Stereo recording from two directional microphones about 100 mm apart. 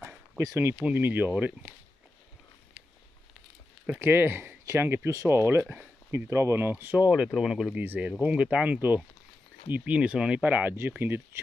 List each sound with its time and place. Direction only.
0.8 s speech: 20° right (ahead or behind)
4.0 s speech: 20° right (ahead or behind)
7.1 s speech: 5° right (ahead or behind)
7.7 s speech: 20° right (ahead or behind)